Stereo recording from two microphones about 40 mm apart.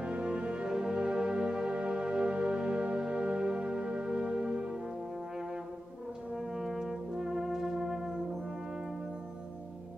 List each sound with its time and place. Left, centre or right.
0.0 s music: right
6.3 s brass instrument: centre